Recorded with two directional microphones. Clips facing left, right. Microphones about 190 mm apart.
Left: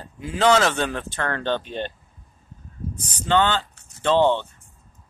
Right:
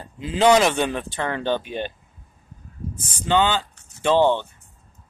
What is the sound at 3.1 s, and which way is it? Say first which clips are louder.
Speech: even; 10° right (ahead or behind).